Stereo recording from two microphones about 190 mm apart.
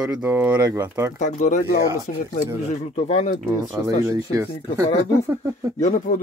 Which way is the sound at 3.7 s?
15° right (ahead or behind).